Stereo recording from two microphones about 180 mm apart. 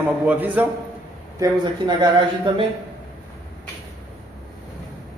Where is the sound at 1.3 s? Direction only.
20° right (ahead or behind).